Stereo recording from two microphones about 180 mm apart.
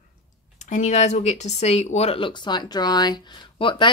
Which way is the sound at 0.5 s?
40° left (ahead or behind).